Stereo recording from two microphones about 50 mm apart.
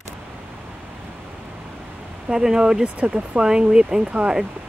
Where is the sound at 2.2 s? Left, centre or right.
Centre.